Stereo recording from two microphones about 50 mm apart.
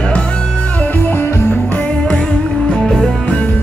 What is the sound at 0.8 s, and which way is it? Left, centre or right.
Music, left.